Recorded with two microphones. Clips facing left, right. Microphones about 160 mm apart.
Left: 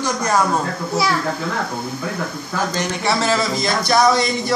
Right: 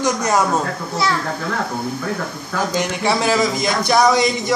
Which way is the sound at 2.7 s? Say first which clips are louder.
Right 3 dB; 15° right (ahead or behind).